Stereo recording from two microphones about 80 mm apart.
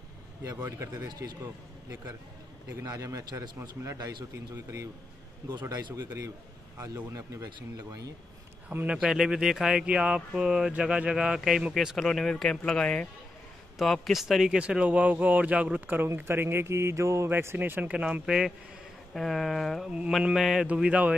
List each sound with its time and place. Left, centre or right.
0.4 s a man's voice: right
2.7 s mantra: right
4.6 s mantra: right
5.5 s speech: right
5.9 s a man's voice: right
7.1 s mantra: right
7.4 s a man's voice: right
8.8 s speech: centre
16.3 s mantra: right
17.3 s speech: right; by 20.6 s centre
20.6 s speech: centre